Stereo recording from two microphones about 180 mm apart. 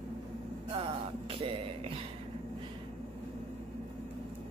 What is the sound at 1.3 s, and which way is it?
Music, 30° right (ahead or behind).